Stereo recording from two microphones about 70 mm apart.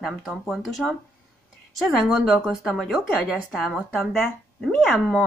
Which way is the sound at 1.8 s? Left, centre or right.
Centre.